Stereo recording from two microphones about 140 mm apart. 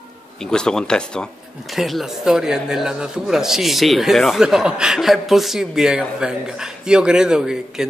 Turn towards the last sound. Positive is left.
turn(degrees=-5)  # may be behind; listen again after turning